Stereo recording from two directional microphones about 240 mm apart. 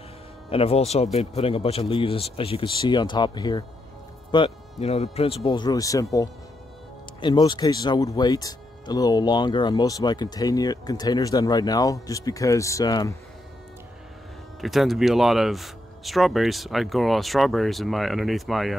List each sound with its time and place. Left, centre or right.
0.5 s speech: left
7.2 s speech: centre
14.6 s speech: centre